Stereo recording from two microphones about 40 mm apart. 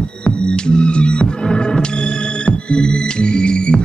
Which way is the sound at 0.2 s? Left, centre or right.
Left.